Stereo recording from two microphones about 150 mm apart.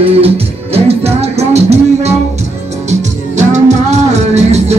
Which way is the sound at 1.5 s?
45° right (ahead or behind).